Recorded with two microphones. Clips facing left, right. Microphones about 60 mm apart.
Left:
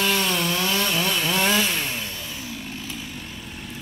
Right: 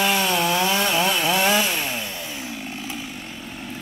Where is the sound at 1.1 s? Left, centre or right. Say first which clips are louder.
Right 2 dB; centre.